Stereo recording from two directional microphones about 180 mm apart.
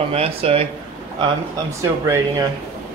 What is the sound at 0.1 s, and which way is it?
Speech, 30° right (ahead or behind).